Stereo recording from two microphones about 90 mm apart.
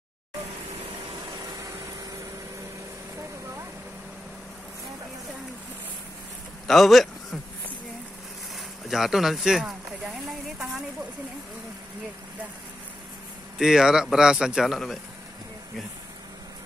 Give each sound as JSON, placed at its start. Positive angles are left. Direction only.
{"t": 1.2, "sound": "vehicle", "side_deg": -45}
{"t": 6.7, "sound": "speech", "side_deg": 0}
{"t": 8.5, "sound": "a sound", "side_deg": -5}
{"t": 13.6, "sound": "a man's voice", "side_deg": -5}